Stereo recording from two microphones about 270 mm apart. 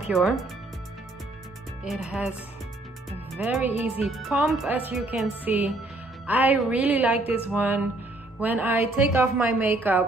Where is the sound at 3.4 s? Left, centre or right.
Centre.